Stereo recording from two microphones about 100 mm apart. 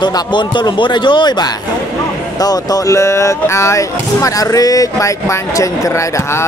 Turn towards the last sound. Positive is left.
turn(degrees=30)  # may be behind; listen again after turning